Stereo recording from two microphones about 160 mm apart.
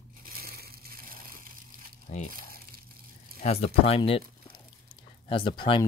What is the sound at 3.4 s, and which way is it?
Speech, 45° left (ahead or behind).